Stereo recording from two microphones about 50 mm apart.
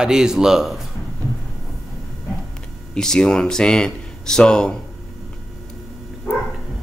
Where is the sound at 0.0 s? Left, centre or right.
Centre.